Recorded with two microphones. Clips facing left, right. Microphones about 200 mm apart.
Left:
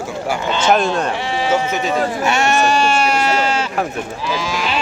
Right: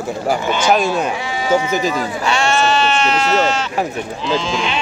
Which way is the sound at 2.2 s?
20° left (ahead or behind).